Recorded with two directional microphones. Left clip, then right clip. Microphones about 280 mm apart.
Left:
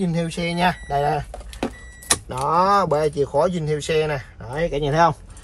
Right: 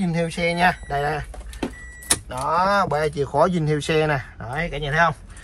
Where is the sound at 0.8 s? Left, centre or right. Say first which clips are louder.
Left 3 dB; centre.